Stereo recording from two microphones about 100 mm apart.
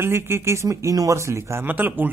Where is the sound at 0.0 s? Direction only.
25° right (ahead or behind).